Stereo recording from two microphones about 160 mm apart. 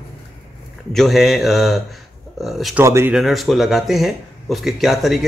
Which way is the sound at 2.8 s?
15° right (ahead or behind).